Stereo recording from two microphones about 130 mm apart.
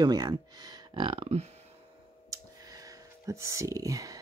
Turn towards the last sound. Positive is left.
turn(degrees=-25)  # may be behind; listen again after turning